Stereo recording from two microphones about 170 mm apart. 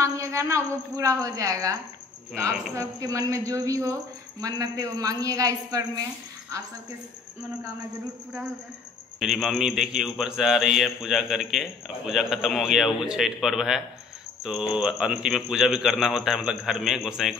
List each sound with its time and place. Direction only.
0.0 s a woman's voice: 15° right (ahead or behind)
9.2 s a man's voice: centre (ahead or behind)